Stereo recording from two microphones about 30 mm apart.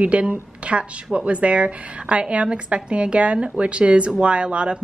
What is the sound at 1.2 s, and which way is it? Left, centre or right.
A woman's voice, right.